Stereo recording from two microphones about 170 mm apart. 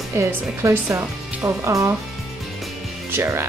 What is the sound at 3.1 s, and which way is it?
Speech, 15° right (ahead or behind).